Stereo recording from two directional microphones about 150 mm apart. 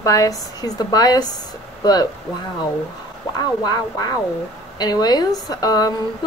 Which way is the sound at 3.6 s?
25° left (ahead or behind).